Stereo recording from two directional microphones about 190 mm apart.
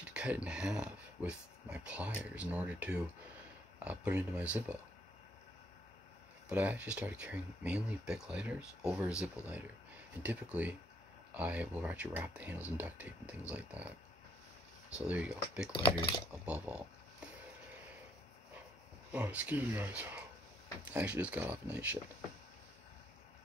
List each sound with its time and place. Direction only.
0.0 s speech: 5° right (ahead or behind)
6.5 s speech: 10° right (ahead or behind)
15.0 s speech: 5° right (ahead or behind)
15.7 s speech: 25° left (ahead or behind)
16.4 s speech: 5° right (ahead or behind)
19.1 s speech: 10° right (ahead or behind)